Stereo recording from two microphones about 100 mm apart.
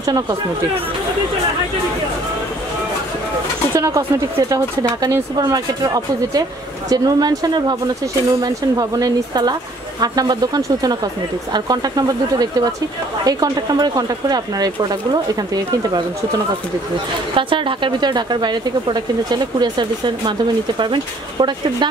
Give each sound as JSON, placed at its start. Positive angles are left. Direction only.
{"t": 0.0, "sound": "speech", "side_deg": -40}
{"t": 3.7, "sound": "speech", "side_deg": -30}
{"t": 17.4, "sound": "speech", "side_deg": -55}